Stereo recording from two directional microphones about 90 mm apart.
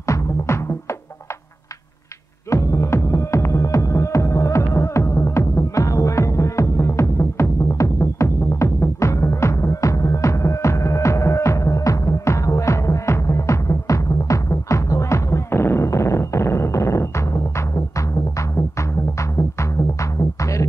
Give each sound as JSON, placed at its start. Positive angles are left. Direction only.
{"t": 0.0, "sound": "music", "side_deg": 35}
{"t": 2.5, "sound": "music", "side_deg": 35}